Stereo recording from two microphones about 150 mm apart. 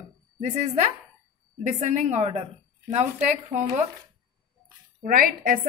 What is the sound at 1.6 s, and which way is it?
A woman's voice, 55° right (ahead or behind).